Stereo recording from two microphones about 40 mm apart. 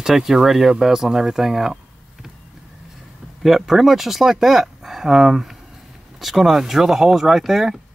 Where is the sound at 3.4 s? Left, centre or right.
Centre.